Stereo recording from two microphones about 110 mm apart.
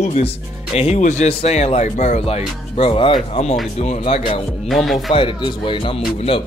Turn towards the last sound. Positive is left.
turn(degrees=55)  # may be behind; listen again after turning